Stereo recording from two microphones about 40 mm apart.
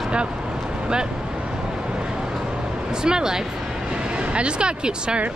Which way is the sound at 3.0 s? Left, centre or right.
Centre.